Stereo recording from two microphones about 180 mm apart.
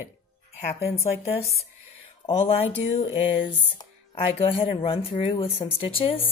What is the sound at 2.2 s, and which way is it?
A woman's voice, 30° left (ahead or behind).